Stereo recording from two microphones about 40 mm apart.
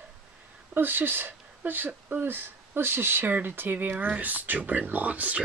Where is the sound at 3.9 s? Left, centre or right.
Right.